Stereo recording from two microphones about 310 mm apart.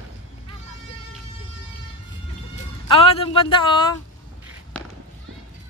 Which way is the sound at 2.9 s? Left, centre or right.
Centre.